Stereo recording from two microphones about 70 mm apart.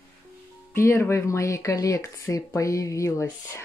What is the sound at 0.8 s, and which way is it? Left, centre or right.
Speech, left.